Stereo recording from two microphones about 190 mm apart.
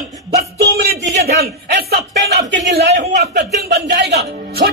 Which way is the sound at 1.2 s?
55° right (ahead or behind).